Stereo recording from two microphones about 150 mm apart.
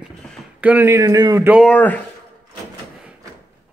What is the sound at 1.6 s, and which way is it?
Speech, 10° left (ahead or behind).